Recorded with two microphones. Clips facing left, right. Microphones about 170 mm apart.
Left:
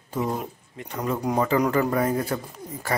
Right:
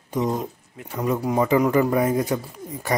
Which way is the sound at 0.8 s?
5° right (ahead or behind).